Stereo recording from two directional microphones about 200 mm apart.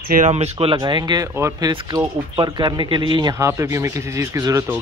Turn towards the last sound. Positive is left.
turn(degrees=-15)  # may be behind; listen again after turning